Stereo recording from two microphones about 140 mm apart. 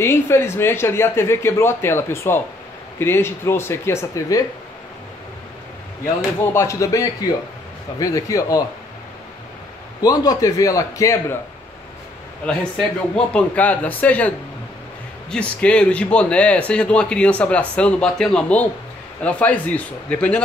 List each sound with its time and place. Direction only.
0.0 s speech: 15° left (ahead or behind)
6.5 s a man's voice: 20° left (ahead or behind)
10.0 s a man's voice: 25° left (ahead or behind)
12.4 s speech: 5° left (ahead or behind)
15.3 s speech: 10° left (ahead or behind)